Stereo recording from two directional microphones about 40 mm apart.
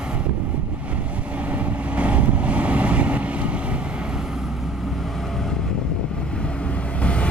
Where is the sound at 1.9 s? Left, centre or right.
Right.